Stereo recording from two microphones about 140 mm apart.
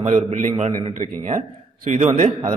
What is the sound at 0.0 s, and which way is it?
Speech, 55° right (ahead or behind).